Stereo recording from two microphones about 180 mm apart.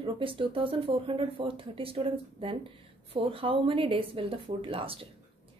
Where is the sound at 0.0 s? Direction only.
30° right (ahead or behind).